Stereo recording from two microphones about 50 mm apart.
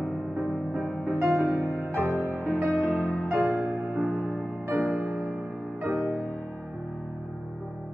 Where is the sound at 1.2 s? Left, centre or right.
Right.